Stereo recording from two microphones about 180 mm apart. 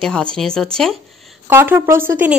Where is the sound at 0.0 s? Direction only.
5° left (ahead or behind).